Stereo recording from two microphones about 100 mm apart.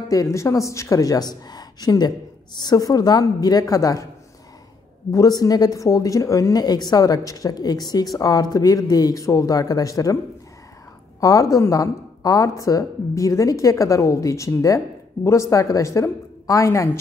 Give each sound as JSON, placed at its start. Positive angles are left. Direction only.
{"t": 0.1, "sound": "speech", "side_deg": 30}
{"t": 5.1, "sound": "speech", "side_deg": 35}
{"t": 11.1, "sound": "speech", "side_deg": 35}